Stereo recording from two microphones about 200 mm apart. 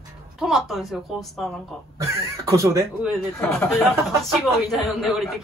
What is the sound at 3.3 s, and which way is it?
Speech, 15° left (ahead or behind).